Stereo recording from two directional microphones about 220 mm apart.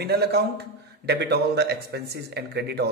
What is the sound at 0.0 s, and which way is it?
A man's voice, 45° right (ahead or behind).